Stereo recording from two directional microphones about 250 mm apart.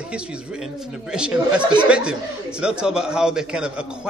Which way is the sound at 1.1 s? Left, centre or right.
Centre.